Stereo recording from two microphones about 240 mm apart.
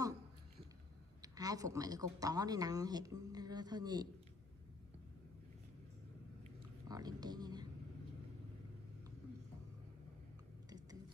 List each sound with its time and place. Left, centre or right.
1.2 s a woman's voice: centre
6.9 s speech: centre